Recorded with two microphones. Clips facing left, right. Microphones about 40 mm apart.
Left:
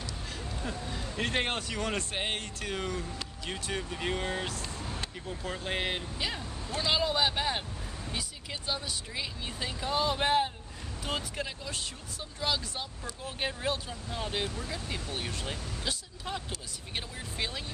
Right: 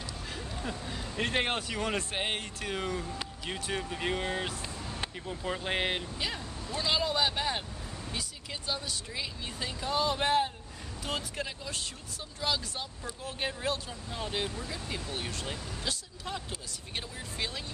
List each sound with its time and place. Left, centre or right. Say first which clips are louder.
0.3 s speech: right 1 dB; centre
6.1 s speech: left 1 dB; centre